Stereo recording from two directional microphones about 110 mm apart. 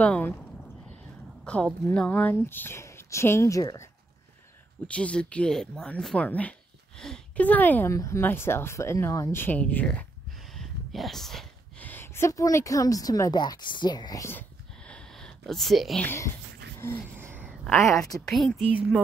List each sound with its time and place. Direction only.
0.0 s speech: 10° left (ahead or behind)
1.4 s a woman's voice: 10° left (ahead or behind); by 3.8 s 30° left (ahead or behind)
4.8 s speech: 10° left (ahead or behind)
7.9 s speech: 25° left (ahead or behind)
10.5 s a sound: centre (ahead or behind)
11.8 s a woman's voice: 20° left (ahead or behind); by 14.2 s 40° left (ahead or behind)
14.9 s a sound: 5° left (ahead or behind)
16.8 s speech: 20° left (ahead or behind)
17.2 s a sound: 20° right (ahead or behind)
18.1 s a woman's voice: 5° left (ahead or behind)
18.6 s speech: 10° right (ahead or behind)